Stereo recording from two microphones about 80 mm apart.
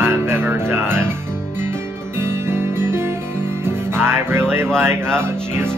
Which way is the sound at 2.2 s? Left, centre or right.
Right.